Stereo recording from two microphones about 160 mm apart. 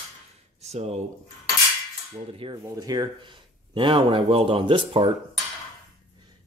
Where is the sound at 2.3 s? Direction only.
30° right (ahead or behind).